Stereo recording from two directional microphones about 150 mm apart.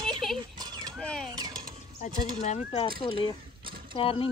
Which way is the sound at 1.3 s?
25° right (ahead or behind).